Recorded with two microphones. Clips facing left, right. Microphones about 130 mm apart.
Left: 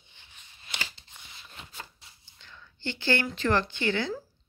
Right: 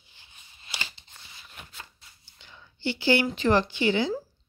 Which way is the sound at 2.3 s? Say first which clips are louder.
Even; 15° right (ahead or behind).